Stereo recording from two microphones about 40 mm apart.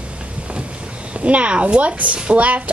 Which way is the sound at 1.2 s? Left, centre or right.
Right.